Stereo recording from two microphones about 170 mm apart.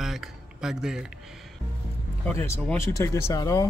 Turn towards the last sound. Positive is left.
turn(degrees=20)  # may be behind; listen again after turning